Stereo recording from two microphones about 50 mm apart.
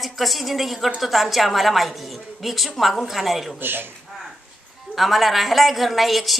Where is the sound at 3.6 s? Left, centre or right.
Right.